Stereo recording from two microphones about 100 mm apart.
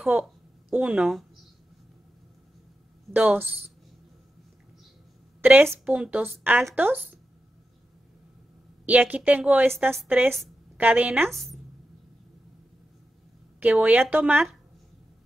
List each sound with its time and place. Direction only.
0.0 s speech: 10° right (ahead or behind)
3.1 s a woman's voice: 15° right (ahead or behind)
5.4 s a woman's voice: 15° right (ahead or behind)
8.8 s a woman's voice: 15° right (ahead or behind)
11.2 s a woman's voice: centre (ahead or behind)
13.6 s a woman's voice: 15° right (ahead or behind)